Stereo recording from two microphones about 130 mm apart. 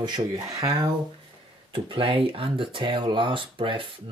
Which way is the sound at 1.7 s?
45° right (ahead or behind).